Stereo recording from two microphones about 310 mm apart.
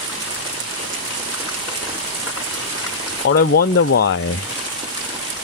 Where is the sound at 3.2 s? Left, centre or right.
Left.